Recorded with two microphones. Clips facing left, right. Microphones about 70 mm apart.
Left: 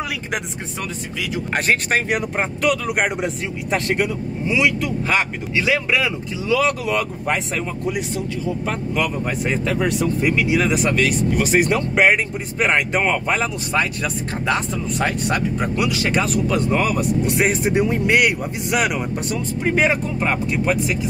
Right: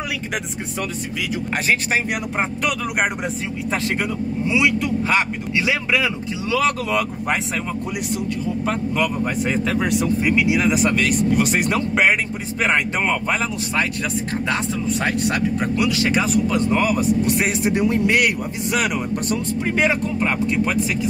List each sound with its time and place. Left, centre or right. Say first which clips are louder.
1.7 s speech: left 1 dB; centre
8.6 s speech: right 3 dB; centre
17.6 s speech: even; centre